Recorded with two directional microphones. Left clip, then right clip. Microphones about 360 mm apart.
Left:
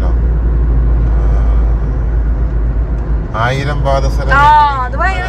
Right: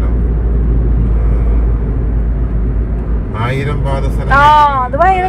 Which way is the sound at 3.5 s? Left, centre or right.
Centre.